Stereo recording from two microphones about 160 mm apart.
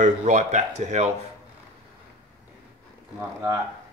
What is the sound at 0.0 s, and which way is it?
Speech, 45° right (ahead or behind).